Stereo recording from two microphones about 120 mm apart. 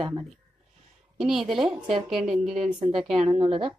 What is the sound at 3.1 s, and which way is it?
Speech, 55° right (ahead or behind).